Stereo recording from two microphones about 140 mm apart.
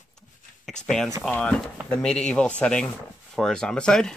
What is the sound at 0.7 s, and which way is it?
Speech, 5° left (ahead or behind).